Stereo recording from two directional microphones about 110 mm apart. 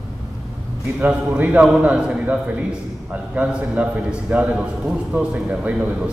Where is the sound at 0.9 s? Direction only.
15° right (ahead or behind).